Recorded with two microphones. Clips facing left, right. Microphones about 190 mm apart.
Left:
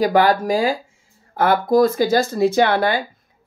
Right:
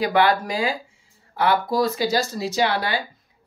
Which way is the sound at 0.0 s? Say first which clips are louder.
Left 4 dB; 40° left (ahead or behind).